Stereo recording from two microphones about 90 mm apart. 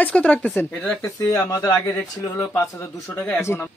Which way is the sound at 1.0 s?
35° left (ahead or behind).